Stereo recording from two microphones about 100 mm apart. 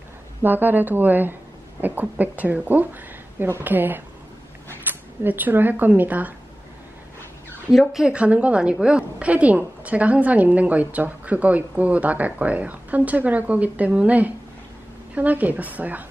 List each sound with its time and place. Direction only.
0.4 s a woman's voice: 20° right (ahead or behind)
7.7 s a woman's voice: centre (ahead or behind); by 16.1 s 15° right (ahead or behind)